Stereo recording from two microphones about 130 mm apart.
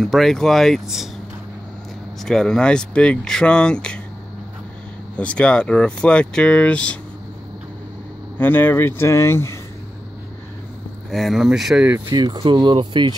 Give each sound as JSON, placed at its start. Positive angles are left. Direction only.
{"t": 0.0, "sound": "speech", "side_deg": 0}
{"t": 2.2, "sound": "speech", "side_deg": 5}
{"t": 5.1, "sound": "speech", "side_deg": 10}
{"t": 8.4, "sound": "speech", "side_deg": 15}
{"t": 11.1, "sound": "speech", "side_deg": 0}
{"t": 12.1, "sound": "speech", "side_deg": -35}